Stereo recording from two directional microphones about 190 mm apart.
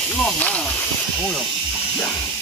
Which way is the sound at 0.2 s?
10° left (ahead or behind).